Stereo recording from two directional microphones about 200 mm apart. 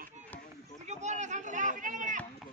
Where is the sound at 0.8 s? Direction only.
35° right (ahead or behind).